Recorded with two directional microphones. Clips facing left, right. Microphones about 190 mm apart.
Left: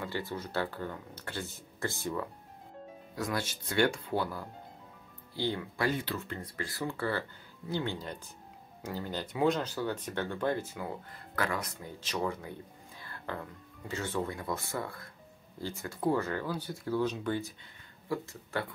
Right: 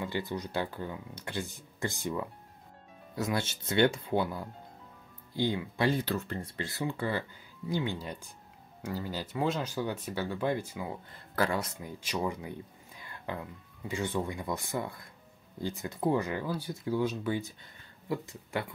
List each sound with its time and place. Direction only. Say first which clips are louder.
0.0 s speech: right 2 dB; 15° right (ahead or behind)
6.0 s speech: right 4 dB; 40° right (ahead or behind)
6.4 s speech: right 2 dB; 25° right (ahead or behind)
11.3 s speech: right 4 dB; 30° right (ahead or behind)
12.0 s speech: right 1 dB; 10° right (ahead or behind)
18.0 s speech: right 1 dB; 20° right (ahead or behind)